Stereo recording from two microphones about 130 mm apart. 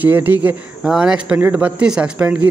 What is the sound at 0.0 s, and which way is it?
A man's voice, 15° right (ahead or behind).